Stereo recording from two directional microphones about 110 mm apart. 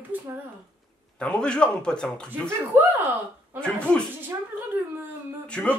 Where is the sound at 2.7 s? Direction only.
20° right (ahead or behind).